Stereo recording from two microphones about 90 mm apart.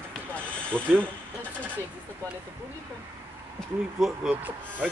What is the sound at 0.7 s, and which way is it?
Speech, 15° right (ahead or behind).